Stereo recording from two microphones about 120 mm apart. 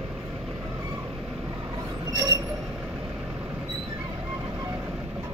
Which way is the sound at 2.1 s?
30° right (ahead or behind).